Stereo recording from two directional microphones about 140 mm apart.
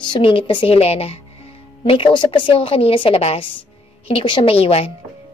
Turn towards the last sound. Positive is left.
turn(degrees=45)  # may be behind; listen again after turning